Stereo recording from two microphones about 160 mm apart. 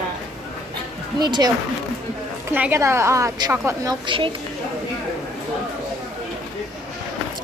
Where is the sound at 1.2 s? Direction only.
25° right (ahead or behind).